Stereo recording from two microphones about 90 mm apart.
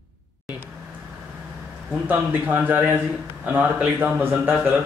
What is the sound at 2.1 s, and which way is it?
A man's voice, 20° right (ahead or behind).